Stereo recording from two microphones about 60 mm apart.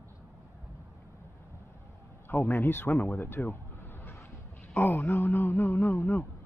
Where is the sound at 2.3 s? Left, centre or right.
Left.